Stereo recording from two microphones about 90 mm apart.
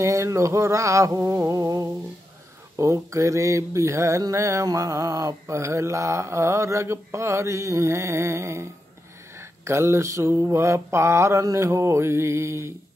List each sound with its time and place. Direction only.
0.0 s mantra: 35° right (ahead or behind)